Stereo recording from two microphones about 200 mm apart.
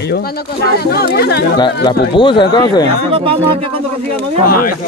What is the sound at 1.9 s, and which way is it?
Speech, 25° left (ahead or behind).